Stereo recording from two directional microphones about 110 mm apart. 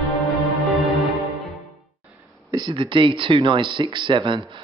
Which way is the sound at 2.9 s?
50° right (ahead or behind).